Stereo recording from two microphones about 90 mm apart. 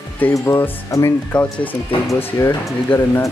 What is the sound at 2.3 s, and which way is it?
Speech, 30° left (ahead or behind).